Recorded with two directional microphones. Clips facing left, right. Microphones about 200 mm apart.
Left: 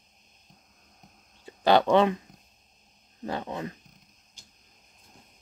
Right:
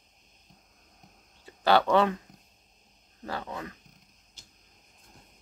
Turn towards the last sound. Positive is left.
turn(degrees=25)  # may be behind; listen again after turning